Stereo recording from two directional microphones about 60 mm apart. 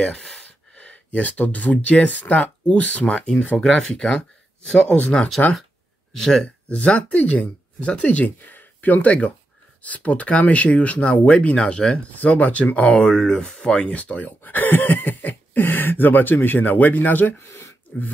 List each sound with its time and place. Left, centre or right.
0.0 s speech: centre
0.7 s speech: left
3.5 s speech: centre
6.1 s speech: centre
6.4 s speech: left
12.1 s speech: left
13.0 s speech: centre
13.8 s speech: left
17.4 s a sound: left